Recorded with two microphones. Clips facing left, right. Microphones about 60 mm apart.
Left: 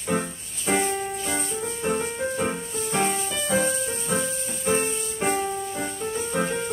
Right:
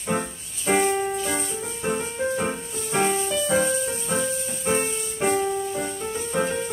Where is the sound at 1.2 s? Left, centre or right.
Centre.